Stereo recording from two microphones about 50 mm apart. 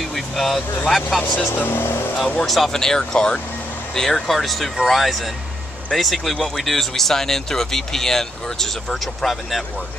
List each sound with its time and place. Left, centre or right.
0.0 s speech: centre
1.5 s speech: left
2.1 s speech: centre